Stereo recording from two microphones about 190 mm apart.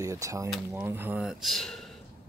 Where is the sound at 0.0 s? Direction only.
15° right (ahead or behind); by 1.9 s centre (ahead or behind).